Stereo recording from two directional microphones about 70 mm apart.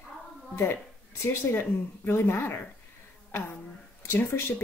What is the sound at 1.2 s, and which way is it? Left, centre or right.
Speech, left.